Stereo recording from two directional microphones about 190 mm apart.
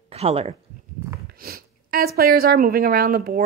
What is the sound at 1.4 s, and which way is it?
A woman's voice, 55° right (ahead or behind).